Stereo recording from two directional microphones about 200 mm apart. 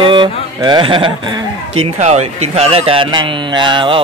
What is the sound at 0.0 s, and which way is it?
A man's voice, 25° right (ahead or behind).